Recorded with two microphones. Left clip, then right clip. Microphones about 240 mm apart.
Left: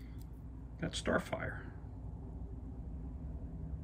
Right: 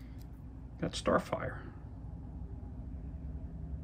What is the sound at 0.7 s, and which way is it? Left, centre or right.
Speech, centre.